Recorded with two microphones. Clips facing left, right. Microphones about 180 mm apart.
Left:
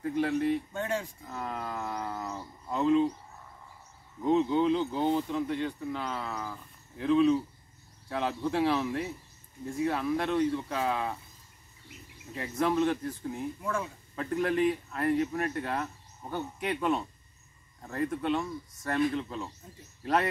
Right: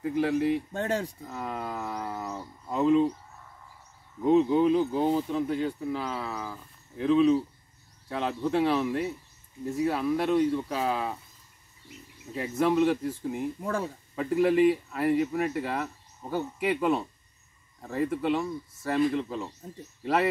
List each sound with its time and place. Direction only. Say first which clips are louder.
0.0 s speech: right 2 dB; 5° right (ahead or behind)
0.7 s speech: right 3 dB; 35° right (ahead or behind)
1.2 s wild animals: right 2 dB; 5° right (ahead or behind)
4.2 s speech: right 4 dB; 10° right (ahead or behind)
12.4 s speech: right 3 dB; 5° right (ahead or behind)
13.6 s speech: right 3 dB; 35° right (ahead or behind)
14.1 s speech: right 5 dB; 5° right (ahead or behind)